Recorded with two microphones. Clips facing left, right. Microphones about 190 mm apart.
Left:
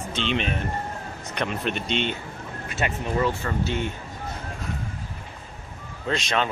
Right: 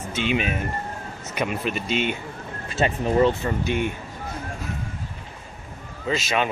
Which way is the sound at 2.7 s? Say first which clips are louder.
Right 5 dB; 30° right (ahead or behind).